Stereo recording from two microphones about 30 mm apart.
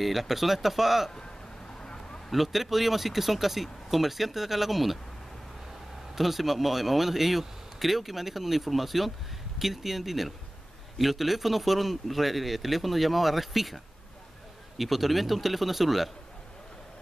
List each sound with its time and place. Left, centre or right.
0.0 s speech: centre
1.8 s a sound: left
2.3 s speech: centre
6.1 s speech: centre
14.8 s speech: centre